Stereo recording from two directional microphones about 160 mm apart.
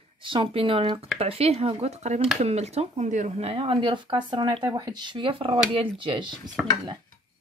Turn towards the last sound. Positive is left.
turn(degrees=-30)  # may be behind; listen again after turning